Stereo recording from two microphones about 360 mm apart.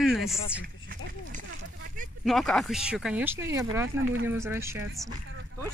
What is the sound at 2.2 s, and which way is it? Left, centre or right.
Speech, centre.